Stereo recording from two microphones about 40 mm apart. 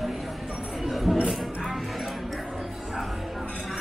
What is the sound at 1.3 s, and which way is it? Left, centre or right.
Music, centre.